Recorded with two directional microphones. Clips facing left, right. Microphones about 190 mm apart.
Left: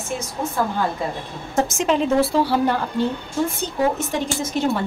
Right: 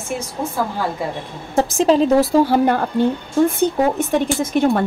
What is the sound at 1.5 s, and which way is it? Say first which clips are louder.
A woman's voice: right 5 dB; 35° right (ahead or behind).